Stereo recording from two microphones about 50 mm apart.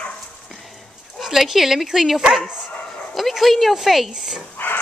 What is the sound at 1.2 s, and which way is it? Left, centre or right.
Speech, centre.